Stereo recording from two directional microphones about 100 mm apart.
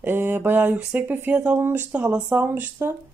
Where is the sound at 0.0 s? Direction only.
20° right (ahead or behind).